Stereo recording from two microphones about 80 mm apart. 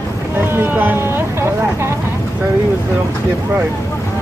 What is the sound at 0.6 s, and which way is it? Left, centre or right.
Speech, right.